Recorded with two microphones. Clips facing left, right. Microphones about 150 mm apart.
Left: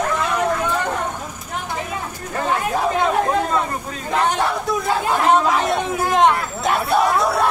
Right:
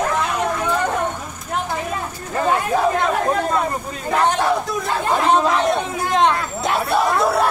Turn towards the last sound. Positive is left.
turn(degrees=5)  # may be behind; listen again after turning